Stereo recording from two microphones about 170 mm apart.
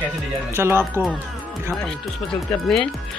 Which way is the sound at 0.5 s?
15° right (ahead or behind).